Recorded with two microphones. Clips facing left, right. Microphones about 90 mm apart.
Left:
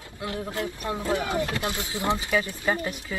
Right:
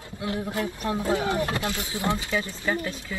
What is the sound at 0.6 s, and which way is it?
Speech, 20° left (ahead or behind).